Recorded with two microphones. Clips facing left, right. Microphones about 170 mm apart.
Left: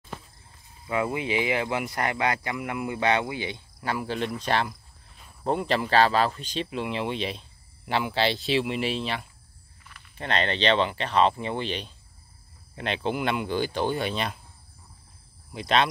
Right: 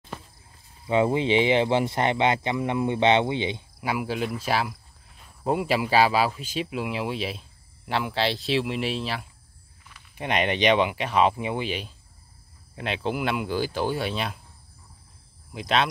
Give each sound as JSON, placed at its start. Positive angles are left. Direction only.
{"t": 0.8, "sound": "speech", "side_deg": -25}
{"t": 9.9, "sound": "speech", "side_deg": -15}
{"t": 15.5, "sound": "speech", "side_deg": -5}